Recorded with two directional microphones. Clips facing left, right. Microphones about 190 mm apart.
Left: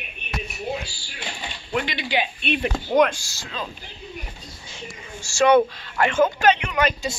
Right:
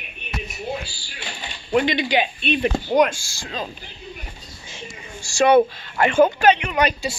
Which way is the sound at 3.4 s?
40° right (ahead or behind).